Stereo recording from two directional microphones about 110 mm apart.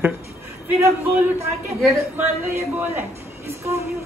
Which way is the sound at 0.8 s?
25° right (ahead or behind).